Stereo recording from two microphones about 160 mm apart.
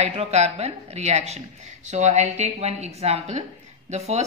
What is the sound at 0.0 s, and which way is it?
Speech, 40° right (ahead or behind).